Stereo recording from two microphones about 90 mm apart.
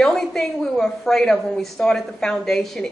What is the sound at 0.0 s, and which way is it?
A woman's voice, 5° left (ahead or behind).